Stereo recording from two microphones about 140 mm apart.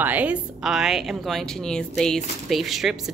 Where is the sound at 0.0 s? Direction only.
10° right (ahead or behind).